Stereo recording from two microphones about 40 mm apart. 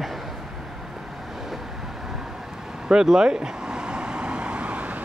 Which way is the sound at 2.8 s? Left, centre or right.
Centre.